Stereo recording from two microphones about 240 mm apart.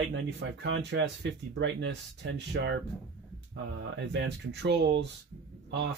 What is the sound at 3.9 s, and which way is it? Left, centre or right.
Speech, right.